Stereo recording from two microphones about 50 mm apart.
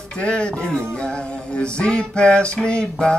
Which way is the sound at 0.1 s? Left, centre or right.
Centre.